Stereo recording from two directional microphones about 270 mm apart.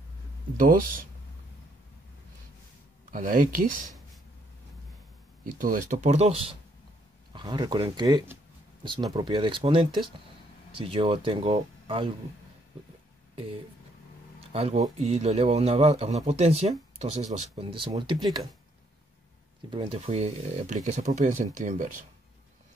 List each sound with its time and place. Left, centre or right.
0.6 s speech: right
3.1 s a man's voice: right
5.4 s a man's voice: right
14.5 s a man's voice: right
19.7 s a man's voice: centre